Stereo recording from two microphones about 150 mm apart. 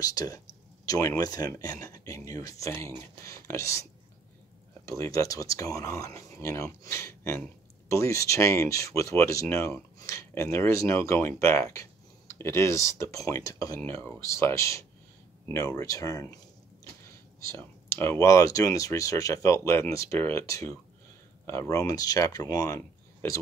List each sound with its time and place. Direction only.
0.0 s speech: 25° left (ahead or behind)
4.8 s speech: 20° left (ahead or behind)
17.5 s speech: 15° left (ahead or behind)